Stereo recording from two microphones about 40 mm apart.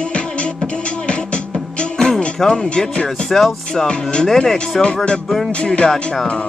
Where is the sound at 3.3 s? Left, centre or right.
Centre.